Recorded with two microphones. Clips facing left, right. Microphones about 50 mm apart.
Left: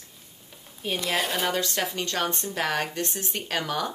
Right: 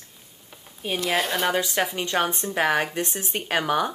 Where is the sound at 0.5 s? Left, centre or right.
Centre.